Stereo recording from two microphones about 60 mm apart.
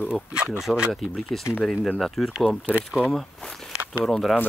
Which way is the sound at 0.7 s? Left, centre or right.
Centre.